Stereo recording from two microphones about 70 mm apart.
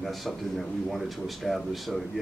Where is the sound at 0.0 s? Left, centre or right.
Centre.